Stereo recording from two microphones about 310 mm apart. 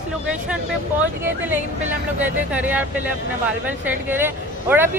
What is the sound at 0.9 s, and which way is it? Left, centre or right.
A man's voice, centre.